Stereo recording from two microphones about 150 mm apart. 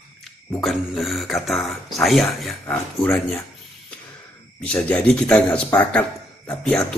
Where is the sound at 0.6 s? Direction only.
Centre (ahead or behind).